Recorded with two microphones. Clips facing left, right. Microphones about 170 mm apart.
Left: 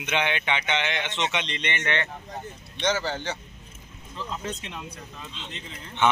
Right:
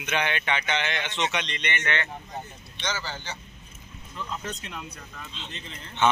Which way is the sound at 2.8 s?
60° left (ahead or behind).